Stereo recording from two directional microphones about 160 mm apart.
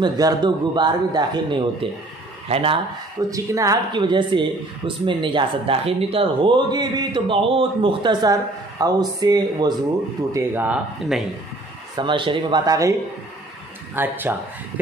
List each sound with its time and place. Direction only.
0.0 s a man's voice: 25° right (ahead or behind)
3.2 s a man's voice: 20° right (ahead or behind)
10.3 s speech: 10° right (ahead or behind)
12.0 s a man's voice: 30° right (ahead or behind)
13.9 s speech: 10° right (ahead or behind)